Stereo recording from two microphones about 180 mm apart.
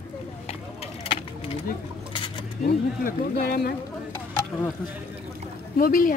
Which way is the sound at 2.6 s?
55° left (ahead or behind).